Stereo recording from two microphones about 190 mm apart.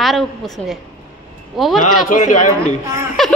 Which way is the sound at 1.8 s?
40° left (ahead or behind).